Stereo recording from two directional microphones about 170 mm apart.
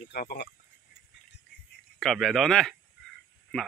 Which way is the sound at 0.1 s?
70° left (ahead or behind).